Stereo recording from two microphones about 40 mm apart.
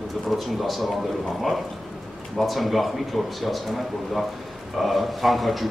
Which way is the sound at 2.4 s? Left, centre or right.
Centre.